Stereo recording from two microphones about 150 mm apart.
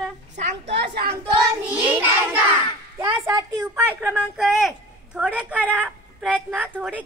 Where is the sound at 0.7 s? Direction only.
90° right.